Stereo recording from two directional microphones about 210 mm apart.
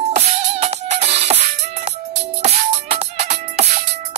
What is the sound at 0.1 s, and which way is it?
Music, 30° right (ahead or behind).